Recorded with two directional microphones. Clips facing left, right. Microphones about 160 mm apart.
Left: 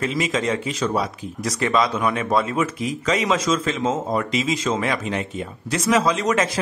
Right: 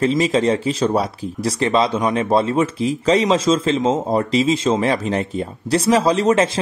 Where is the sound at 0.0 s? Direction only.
30° right (ahead or behind).